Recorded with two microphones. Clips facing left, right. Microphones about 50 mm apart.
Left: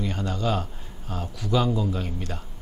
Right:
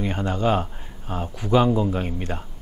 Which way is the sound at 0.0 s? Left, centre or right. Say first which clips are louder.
Right 4 dB; right.